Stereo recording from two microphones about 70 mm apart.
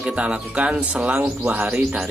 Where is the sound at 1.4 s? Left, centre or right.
Right.